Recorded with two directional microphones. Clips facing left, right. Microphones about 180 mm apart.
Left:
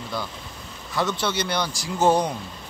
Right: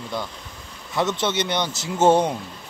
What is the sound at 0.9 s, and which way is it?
Speech, 25° right (ahead or behind).